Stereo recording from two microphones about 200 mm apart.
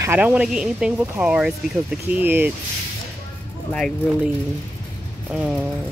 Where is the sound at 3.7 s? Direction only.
Centre (ahead or behind).